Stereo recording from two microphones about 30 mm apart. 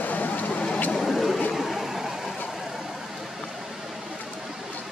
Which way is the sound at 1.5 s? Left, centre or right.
Centre.